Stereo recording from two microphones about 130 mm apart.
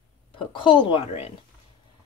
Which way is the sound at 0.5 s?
40° left (ahead or behind).